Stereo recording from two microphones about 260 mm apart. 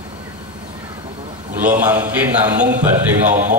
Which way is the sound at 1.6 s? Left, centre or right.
Centre.